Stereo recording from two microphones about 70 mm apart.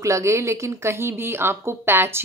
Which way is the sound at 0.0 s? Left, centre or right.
Right.